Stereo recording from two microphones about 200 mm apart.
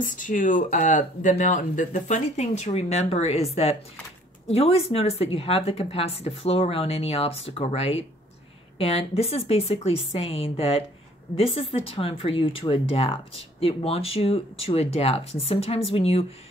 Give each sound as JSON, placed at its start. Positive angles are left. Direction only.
{"t": 0.0, "sound": "speech", "side_deg": 40}